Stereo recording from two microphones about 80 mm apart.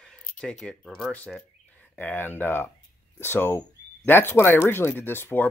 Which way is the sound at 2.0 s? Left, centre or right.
Left.